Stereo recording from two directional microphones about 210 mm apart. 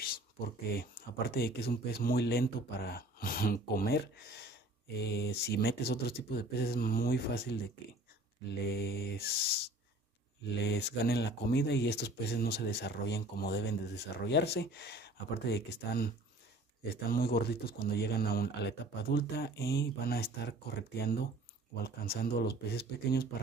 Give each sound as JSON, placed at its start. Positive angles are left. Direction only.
{"t": 0.0, "sound": "speech", "side_deg": 45}
{"t": 8.6, "sound": "speech", "side_deg": 50}
{"t": 10.6, "sound": "speech", "side_deg": 55}